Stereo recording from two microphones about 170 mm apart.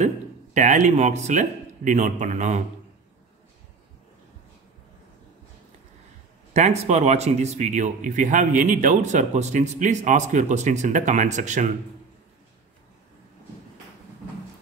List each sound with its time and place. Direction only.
0.6 s speech: 45° right (ahead or behind)
6.5 s speech: 40° right (ahead or behind)